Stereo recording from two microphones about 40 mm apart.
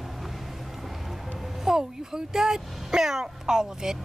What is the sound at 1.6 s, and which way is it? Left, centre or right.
Speech, centre.